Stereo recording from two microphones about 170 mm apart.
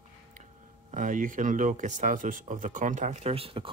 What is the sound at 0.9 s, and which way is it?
Speech, 50° right (ahead or behind).